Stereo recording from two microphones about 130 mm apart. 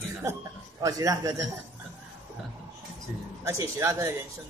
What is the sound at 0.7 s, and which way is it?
Speech, 25° right (ahead or behind).